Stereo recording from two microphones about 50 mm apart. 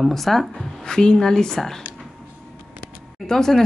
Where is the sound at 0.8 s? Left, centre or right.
Centre.